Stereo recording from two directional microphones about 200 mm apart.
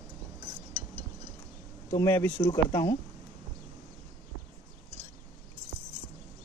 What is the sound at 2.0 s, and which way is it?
Speech, 10° left (ahead or behind).